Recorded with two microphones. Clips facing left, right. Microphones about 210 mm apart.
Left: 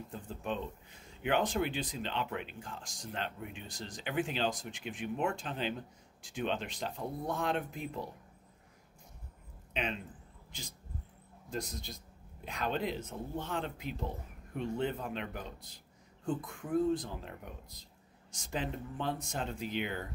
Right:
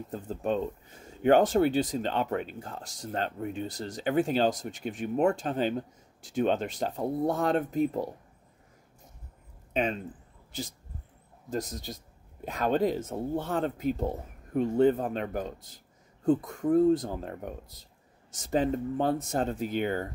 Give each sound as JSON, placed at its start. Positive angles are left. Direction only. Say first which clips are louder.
{"t": 0.1, "sound": "speech", "louder": "right 9 dB", "side_deg": -40}
{"t": 9.8, "sound": "speech", "louder": "right 8 dB", "side_deg": -45}
{"t": 11.5, "sound": "speech", "louder": "right 6 dB", "side_deg": -45}